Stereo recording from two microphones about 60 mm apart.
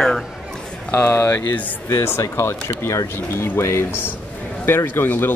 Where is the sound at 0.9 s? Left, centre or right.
Left.